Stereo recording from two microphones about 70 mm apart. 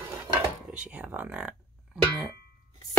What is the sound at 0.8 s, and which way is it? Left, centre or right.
Speech, centre.